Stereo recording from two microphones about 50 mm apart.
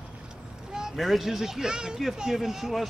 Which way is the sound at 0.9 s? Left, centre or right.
Centre.